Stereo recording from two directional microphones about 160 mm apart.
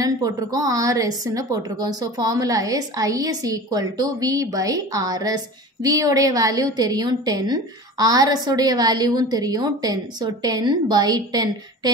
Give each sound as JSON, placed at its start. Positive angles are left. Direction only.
{"t": 0.0, "sound": "a woman's voice", "side_deg": -20}